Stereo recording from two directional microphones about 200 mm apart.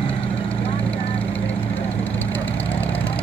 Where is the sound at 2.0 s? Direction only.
10° left (ahead or behind).